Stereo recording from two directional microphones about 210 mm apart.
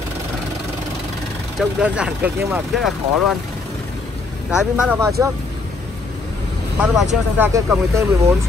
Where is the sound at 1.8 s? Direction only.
5° right (ahead or behind).